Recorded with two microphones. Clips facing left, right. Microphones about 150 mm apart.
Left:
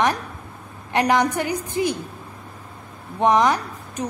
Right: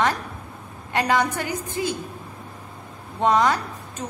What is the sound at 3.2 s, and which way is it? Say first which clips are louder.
Speech: left 2 dB; 15° left (ahead or behind).